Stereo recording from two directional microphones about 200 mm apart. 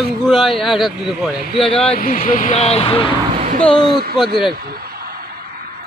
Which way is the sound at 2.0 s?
45° left (ahead or behind).